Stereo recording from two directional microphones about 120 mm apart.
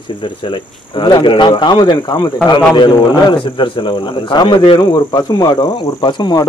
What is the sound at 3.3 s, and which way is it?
A man's voice, 45° left (ahead or behind).